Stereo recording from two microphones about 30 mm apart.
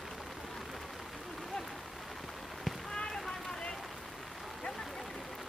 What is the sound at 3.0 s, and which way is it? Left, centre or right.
Run, centre.